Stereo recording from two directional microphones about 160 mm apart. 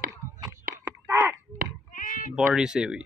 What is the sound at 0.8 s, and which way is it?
Crow, 20° right (ahead or behind).